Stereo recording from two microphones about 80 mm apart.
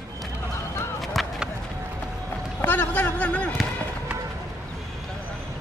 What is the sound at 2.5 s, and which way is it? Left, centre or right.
Basketball bounce, left.